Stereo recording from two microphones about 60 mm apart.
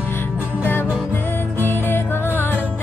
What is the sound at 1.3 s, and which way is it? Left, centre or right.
Music, left.